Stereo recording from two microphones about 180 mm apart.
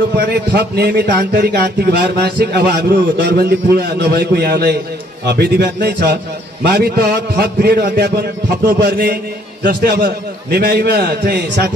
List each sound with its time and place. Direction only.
0.2 s a man's voice: 60° right (ahead or behind)
9.6 s a man's voice: 65° right (ahead or behind)